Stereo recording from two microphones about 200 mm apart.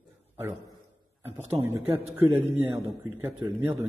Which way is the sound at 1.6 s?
10° right (ahead or behind).